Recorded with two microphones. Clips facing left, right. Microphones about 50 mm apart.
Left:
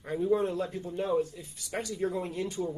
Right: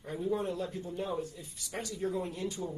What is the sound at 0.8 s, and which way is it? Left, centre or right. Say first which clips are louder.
Speech: left 6 dB; left.